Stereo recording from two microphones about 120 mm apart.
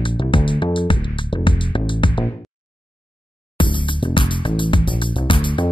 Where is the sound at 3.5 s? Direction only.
45° left (ahead or behind).